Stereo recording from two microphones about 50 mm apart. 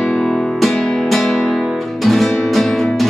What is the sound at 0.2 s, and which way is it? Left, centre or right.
Music, centre.